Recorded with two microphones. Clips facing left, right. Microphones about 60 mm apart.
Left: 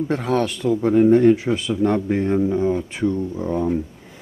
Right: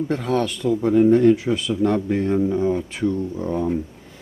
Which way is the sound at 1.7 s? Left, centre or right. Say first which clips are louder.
Left 1 dB; centre.